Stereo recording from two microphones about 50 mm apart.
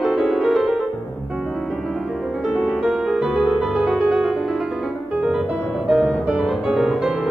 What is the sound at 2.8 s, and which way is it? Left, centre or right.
Music, centre.